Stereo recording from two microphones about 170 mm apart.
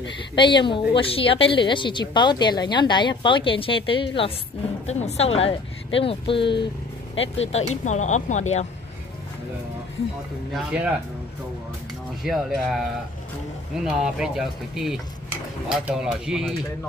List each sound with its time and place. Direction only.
0.4 s a woman's voice: 30° left (ahead or behind)
4.8 s a woman's voice: 40° left (ahead or behind)
7.2 s speech: 40° left (ahead or behind)
10.5 s speech: 5° right (ahead or behind)
12.2 s speech: centre (ahead or behind)
13.8 s speech: 5° right (ahead or behind)